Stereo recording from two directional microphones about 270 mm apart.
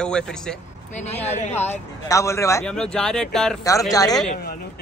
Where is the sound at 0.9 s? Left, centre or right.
Left.